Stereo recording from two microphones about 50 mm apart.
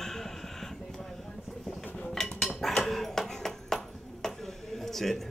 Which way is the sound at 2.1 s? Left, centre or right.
Centre.